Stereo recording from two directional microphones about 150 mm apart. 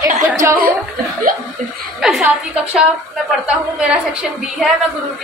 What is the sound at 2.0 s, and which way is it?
A woman's voice, 5° right (ahead or behind).